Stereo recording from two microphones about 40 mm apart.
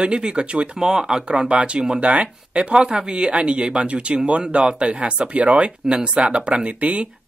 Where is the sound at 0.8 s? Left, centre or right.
Centre.